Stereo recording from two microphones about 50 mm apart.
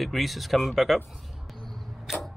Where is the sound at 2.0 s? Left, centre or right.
Centre.